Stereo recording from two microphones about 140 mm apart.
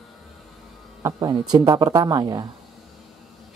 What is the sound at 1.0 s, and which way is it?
Speech, 30° right (ahead or behind).